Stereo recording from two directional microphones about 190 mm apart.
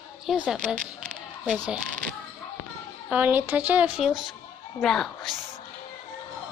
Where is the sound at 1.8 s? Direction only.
45° right (ahead or behind).